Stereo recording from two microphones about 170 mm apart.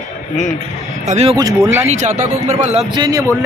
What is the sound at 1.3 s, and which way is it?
Speech, 20° right (ahead or behind).